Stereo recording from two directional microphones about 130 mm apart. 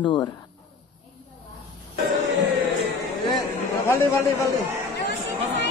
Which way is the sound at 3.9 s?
20° left (ahead or behind).